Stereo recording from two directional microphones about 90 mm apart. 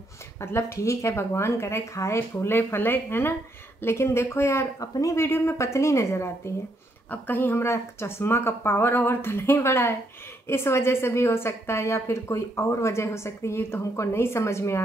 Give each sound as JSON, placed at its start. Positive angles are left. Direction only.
{"t": 0.4, "sound": "a woman's voice", "side_deg": 30}